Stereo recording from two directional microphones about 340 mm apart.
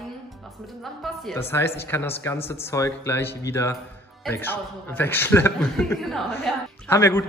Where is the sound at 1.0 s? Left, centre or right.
Centre.